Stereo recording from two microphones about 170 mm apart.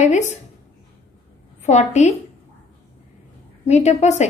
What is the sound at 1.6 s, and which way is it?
Speech, 45° left (ahead or behind).